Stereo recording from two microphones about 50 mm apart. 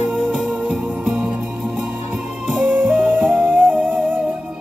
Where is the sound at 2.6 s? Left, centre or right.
Right.